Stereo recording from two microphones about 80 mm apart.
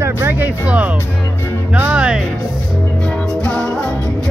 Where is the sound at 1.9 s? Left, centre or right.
Centre.